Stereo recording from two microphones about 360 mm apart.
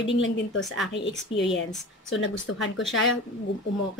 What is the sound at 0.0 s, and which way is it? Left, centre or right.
Speech, left.